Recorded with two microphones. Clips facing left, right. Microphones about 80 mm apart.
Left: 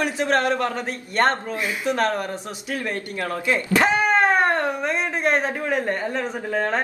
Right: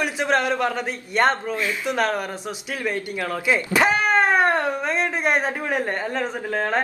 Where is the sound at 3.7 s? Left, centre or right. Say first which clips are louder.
Left 1 dB; centre.